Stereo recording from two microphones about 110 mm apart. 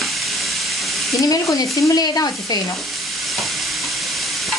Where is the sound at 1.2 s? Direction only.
30° left (ahead or behind).